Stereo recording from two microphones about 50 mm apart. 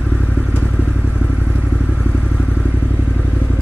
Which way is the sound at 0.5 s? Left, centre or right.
Left.